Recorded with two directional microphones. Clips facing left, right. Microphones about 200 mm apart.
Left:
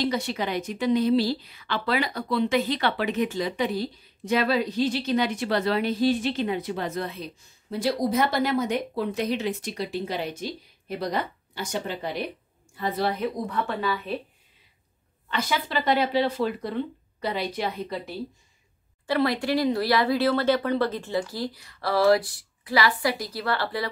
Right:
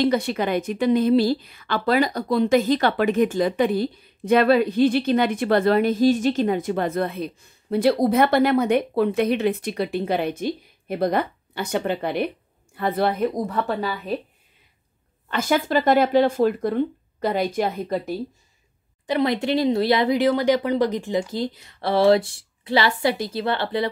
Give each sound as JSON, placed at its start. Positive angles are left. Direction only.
{"t": 0.0, "sound": "a woman's voice", "side_deg": -55}
{"t": 13.5, "sound": "speech", "side_deg": -40}
{"t": 15.2, "sound": "a woman's voice", "side_deg": -50}
{"t": 19.0, "sound": "speech", "side_deg": -20}